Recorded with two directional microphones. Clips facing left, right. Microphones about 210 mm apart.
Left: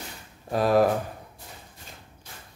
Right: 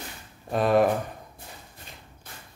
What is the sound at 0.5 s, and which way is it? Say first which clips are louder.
Speech: even; centre (ahead or behind).